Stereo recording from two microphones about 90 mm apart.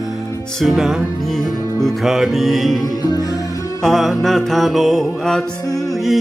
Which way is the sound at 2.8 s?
45° left (ahead or behind).